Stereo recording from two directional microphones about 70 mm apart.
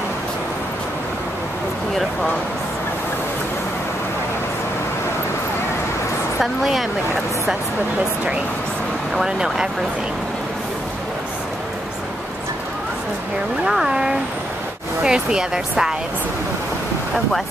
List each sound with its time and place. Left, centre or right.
6.4 s a woman's voice: centre
9.1 s speech: centre
13.7 s speech: centre